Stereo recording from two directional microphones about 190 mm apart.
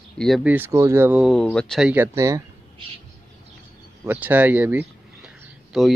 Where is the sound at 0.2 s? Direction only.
Centre (ahead or behind).